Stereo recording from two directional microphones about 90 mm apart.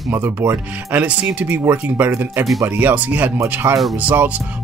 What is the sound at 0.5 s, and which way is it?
Speech, 20° right (ahead or behind).